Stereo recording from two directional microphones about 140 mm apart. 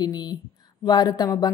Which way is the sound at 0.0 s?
30° left (ahead or behind).